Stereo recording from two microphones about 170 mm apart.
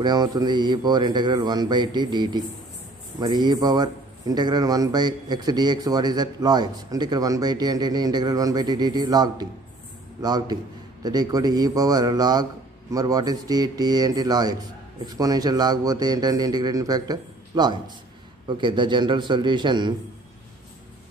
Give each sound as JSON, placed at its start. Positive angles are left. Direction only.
{"t": 0.0, "sound": "a man's voice", "side_deg": -25}